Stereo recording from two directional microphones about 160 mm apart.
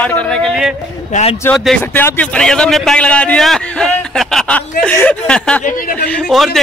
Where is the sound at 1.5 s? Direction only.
Centre (ahead or behind).